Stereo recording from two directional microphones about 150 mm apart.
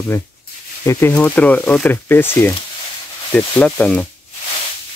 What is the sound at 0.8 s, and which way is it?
Speech, 15° left (ahead or behind).